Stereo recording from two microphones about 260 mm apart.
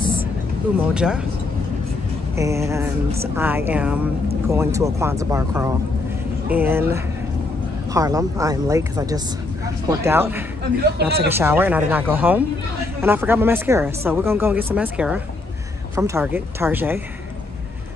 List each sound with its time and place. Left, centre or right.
0.9 s speech: centre
2.3 s speech: centre
11.0 s speech: right
11.3 s speech: centre